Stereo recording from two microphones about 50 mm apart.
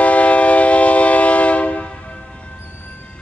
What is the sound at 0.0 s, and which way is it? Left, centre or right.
Train, left.